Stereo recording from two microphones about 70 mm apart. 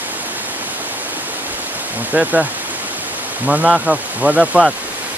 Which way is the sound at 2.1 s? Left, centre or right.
Right.